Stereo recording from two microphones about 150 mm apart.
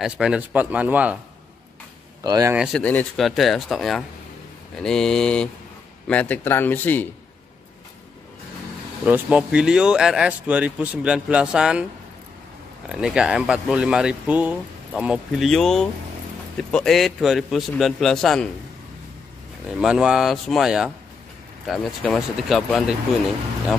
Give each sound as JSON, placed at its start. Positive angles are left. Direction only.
{"t": 0.0, "sound": "speech", "side_deg": -5}
{"t": 2.2, "sound": "speech", "side_deg": -25}
{"t": 2.5, "sound": "speech", "side_deg": -5}
{"t": 2.8, "sound": "a man's voice", "side_deg": 10}
{"t": 9.0, "sound": "speech", "side_deg": -10}
{"t": 12.8, "sound": "speech", "side_deg": -5}
{"t": 19.7, "sound": "speech", "side_deg": -5}
{"t": 22.0, "sound": "speech", "side_deg": 0}